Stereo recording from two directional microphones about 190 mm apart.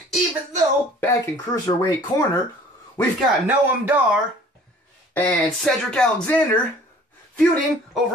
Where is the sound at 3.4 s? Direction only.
10° right (ahead or behind).